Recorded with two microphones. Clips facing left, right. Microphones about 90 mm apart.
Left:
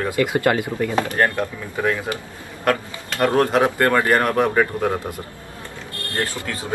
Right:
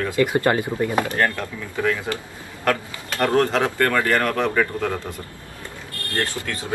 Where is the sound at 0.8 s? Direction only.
20° right (ahead or behind).